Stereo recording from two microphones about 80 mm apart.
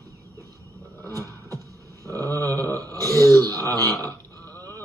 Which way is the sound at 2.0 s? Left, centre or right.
Right.